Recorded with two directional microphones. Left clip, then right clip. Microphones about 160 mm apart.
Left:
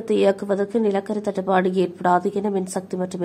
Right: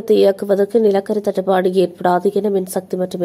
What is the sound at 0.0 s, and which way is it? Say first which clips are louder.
A woman's voice: right 6 dB; 35° right (ahead or behind).